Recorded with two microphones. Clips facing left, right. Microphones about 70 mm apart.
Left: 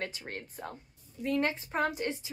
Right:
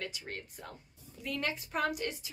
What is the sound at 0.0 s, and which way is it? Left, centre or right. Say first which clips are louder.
A woman's voice: left 3 dB; left.